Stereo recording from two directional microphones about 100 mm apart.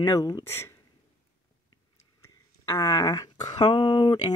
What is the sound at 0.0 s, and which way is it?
Speech, 45° left (ahead or behind).